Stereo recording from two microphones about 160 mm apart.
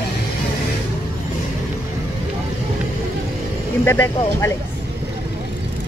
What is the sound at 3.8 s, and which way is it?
Speech, 15° left (ahead or behind).